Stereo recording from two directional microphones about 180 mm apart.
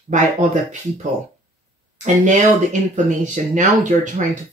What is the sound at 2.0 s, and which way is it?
Speech, 45° right (ahead or behind).